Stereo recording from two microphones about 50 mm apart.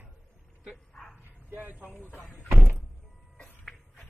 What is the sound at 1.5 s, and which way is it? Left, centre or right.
Vehicle, right.